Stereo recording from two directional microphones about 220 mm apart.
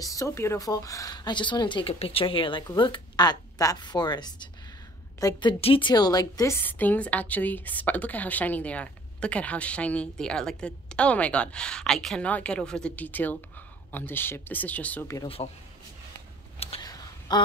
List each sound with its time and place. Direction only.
0.0 s a woman's voice: 15° left (ahead or behind)
15.2 s speech: 25° left (ahead or behind)
16.5 s a sound: 20° left (ahead or behind)